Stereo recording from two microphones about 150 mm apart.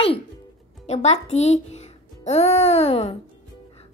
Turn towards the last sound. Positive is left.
turn(degrees=40)  # may be behind; listen again after turning